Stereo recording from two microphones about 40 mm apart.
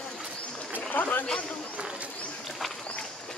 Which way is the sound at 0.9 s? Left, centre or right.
Left.